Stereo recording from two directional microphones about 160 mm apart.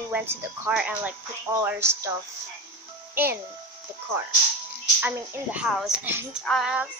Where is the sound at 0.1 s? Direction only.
10° right (ahead or behind).